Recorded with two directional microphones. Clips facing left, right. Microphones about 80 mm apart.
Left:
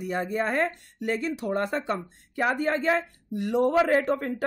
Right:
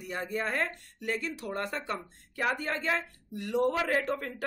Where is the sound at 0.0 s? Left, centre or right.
Left.